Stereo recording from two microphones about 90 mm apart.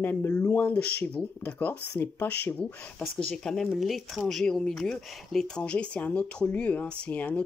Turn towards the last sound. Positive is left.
turn(degrees=15)  # may be behind; listen again after turning